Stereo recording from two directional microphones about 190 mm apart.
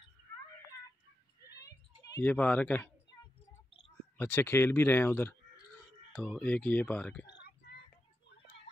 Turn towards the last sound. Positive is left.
turn(degrees=60)  # may be behind; listen again after turning